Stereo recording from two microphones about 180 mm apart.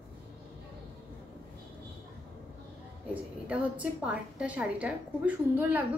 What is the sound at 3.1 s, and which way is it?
A woman's voice, 10° right (ahead or behind).